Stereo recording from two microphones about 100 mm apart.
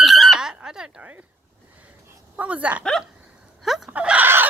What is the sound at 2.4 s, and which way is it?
Speech, 15° right (ahead or behind).